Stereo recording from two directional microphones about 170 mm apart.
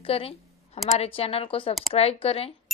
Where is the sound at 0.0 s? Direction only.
35° left (ahead or behind).